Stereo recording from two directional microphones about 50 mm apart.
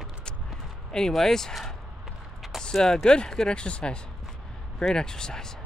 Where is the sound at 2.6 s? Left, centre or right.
Centre.